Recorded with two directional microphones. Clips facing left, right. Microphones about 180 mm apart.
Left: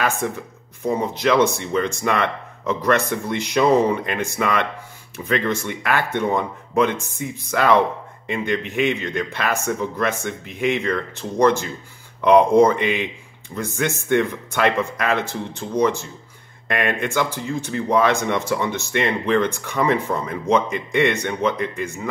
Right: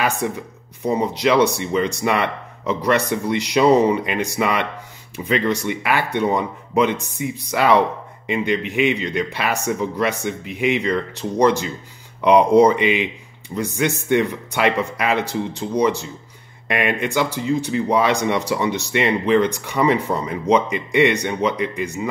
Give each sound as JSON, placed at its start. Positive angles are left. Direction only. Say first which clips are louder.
{"t": 0.2, "sound": "speech", "louder": "right 1 dB", "side_deg": -15}